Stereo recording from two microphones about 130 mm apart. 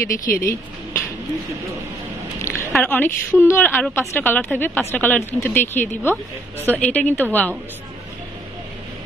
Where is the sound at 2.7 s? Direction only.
10° left (ahead or behind).